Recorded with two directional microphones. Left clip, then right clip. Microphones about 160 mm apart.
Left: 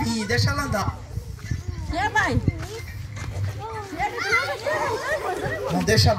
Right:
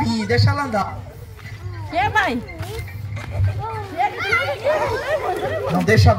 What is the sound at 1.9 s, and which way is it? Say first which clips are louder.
Speech: right 4 dB; 30° right (ahead or behind).